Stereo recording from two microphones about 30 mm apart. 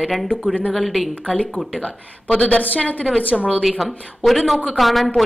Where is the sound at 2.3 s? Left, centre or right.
Left.